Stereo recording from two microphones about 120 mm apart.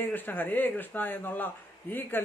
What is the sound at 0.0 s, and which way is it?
A man's voice, 15° left (ahead or behind).